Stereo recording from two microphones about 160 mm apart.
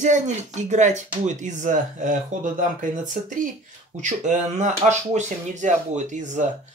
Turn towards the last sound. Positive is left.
turn(degrees=-50)  # may be behind; listen again after turning